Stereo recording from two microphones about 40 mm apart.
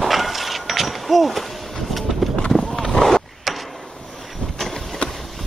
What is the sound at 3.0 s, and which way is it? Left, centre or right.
Skateboard, centre.